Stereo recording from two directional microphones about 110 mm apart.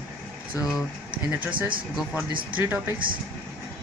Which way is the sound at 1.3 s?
15° right (ahead or behind).